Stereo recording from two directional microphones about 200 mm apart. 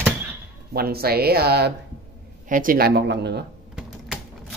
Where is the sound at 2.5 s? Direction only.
45° right (ahead or behind).